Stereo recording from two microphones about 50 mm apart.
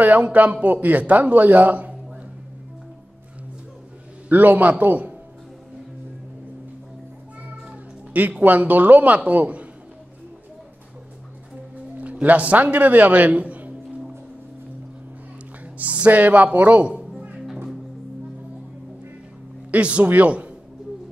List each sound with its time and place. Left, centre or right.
0.0 s speech: right
4.3 s speech: right
8.1 s speech: right
12.0 s a man's voice: right
15.8 s a woman's voice: right
19.7 s a woman's voice: right